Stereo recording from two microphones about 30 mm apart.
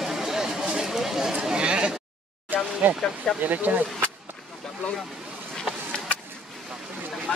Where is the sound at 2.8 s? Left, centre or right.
Right.